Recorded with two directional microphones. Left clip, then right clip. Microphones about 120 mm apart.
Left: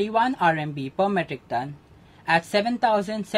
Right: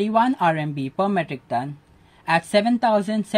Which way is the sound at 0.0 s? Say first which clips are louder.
Right 2 dB; 45° right (ahead or behind).